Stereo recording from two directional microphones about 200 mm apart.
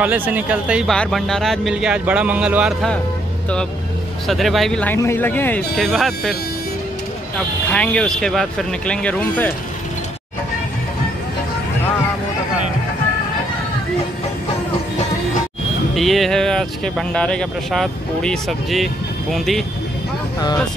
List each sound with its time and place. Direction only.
0.0 s speech: 10° right (ahead or behind)
4.3 s speech: centre (ahead or behind)
7.3 s speech: 5° left (ahead or behind)
15.9 s speech: centre (ahead or behind)